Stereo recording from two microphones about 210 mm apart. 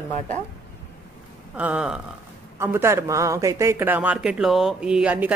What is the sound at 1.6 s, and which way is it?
Speech, 5° right (ahead or behind).